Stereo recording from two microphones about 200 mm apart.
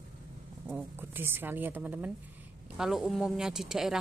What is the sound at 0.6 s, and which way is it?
Speech, 5° right (ahead or behind).